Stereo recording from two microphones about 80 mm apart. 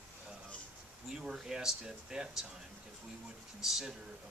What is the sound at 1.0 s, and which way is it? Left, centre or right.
Speech, centre.